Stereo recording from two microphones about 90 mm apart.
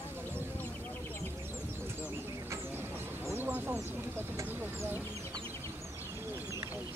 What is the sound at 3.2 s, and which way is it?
Chicken, 25° right (ahead or behind).